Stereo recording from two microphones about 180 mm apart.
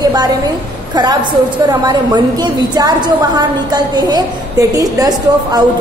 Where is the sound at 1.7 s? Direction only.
20° right (ahead or behind).